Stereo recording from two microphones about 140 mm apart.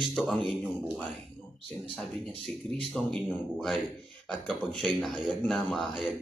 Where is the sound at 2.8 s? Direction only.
5° left (ahead or behind).